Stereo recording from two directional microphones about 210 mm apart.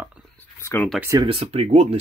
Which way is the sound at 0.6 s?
10° left (ahead or behind).